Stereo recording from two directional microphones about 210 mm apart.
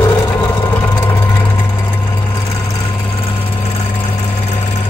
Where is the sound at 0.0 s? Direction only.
15° left (ahead or behind).